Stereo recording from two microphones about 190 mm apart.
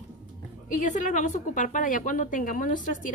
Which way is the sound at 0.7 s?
45° left (ahead or behind).